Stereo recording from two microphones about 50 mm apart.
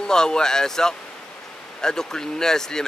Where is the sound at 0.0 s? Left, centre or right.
Centre.